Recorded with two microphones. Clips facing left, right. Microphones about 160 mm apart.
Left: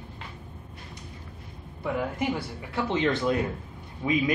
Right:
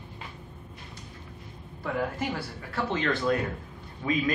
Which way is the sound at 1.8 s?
20° left (ahead or behind).